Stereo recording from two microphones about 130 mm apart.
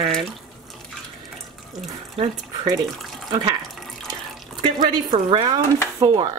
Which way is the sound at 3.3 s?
35° right (ahead or behind).